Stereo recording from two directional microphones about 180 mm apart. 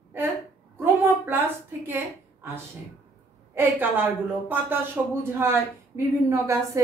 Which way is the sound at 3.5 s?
10° right (ahead or behind).